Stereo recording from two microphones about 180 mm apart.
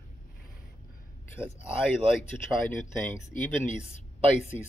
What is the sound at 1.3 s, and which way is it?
Speech, 15° left (ahead or behind).